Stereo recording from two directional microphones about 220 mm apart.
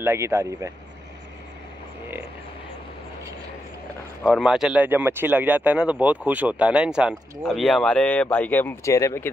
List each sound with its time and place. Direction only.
0.0 s speech: 10° right (ahead or behind)
4.2 s speech: centre (ahead or behind)